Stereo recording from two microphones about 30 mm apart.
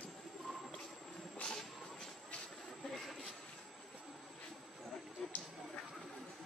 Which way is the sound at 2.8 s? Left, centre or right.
Left.